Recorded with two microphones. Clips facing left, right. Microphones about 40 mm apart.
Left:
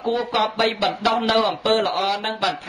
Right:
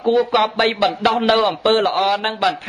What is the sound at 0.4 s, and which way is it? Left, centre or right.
Speech, right.